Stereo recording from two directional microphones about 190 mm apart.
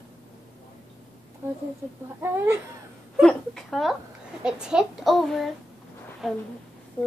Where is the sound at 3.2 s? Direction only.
Centre (ahead or behind).